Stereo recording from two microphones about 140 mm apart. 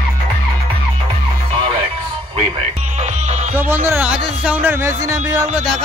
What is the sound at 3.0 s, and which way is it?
Music, 55° right (ahead or behind).